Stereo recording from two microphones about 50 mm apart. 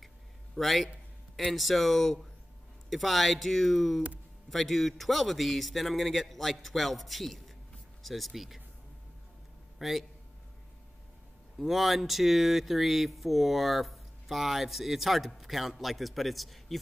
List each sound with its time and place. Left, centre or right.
0.6 s speech: centre
9.8 s a man's voice: centre
11.5 s speech: centre